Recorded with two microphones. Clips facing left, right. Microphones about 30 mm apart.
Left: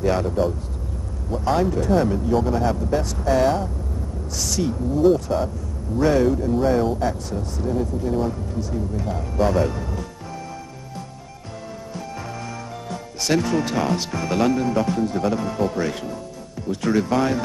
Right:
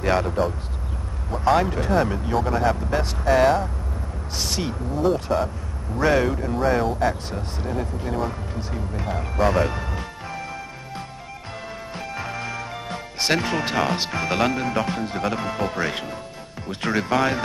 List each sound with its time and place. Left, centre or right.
0.0 s speech: right
4.9 s speech: centre
6.5 s speech: centre
7.3 s speech: right
9.5 s music: right
12.0 s speech: right